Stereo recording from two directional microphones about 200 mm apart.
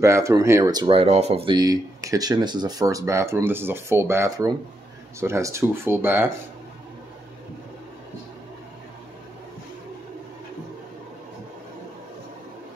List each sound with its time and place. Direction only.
0.0 s speech: 15° right (ahead or behind)